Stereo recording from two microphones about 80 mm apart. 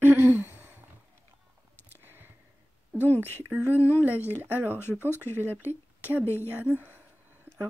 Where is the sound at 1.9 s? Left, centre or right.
Right.